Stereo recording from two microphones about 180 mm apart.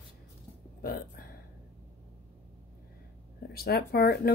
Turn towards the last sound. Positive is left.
turn(degrees=55)  # may be behind; listen again after turning